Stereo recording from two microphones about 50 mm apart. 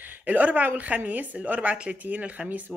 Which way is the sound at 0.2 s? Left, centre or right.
Right.